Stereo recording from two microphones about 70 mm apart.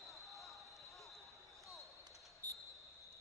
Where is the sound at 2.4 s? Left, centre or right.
Left.